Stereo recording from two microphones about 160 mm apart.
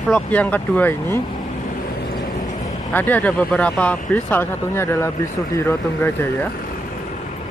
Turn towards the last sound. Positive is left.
turn(degrees=15)  # may be behind; listen again after turning